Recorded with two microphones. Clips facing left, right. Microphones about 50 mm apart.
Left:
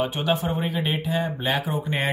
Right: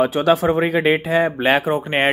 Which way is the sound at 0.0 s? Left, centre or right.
Right.